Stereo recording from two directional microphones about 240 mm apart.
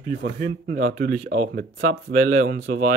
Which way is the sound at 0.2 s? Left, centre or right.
Right.